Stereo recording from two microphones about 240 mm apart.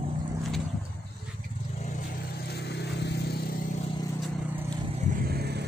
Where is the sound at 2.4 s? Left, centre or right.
Left.